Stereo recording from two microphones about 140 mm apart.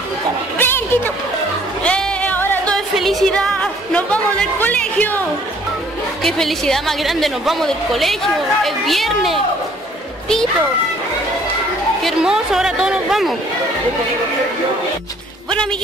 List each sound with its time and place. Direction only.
0.6 s a sound: 15° left (ahead or behind)
1.8 s music: 5° left (ahead or behind)
6.2 s a woman's voice: 5° left (ahead or behind)
12.0 s a woman's voice: centre (ahead or behind)